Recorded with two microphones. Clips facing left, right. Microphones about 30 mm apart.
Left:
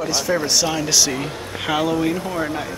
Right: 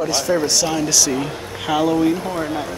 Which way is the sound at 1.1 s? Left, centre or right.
Centre.